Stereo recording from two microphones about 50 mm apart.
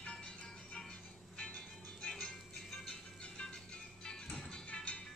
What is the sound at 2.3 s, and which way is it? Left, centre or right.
Music, centre.